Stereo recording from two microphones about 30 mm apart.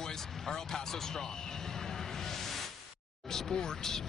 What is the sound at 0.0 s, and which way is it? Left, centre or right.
Speech, centre.